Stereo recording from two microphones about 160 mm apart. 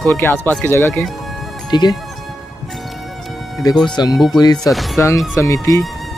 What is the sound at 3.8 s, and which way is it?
Speech, 25° left (ahead or behind).